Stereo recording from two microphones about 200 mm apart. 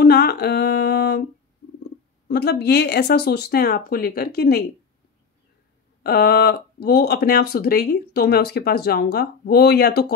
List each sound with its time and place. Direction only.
0.0 s a sound: 55° left (ahead or behind)
2.2 s speech: 55° left (ahead or behind)
6.0 s speech: 50° left (ahead or behind)